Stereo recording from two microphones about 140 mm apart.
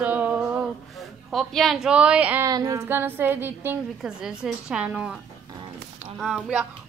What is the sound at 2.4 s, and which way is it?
A woman's voice, 25° right (ahead or behind).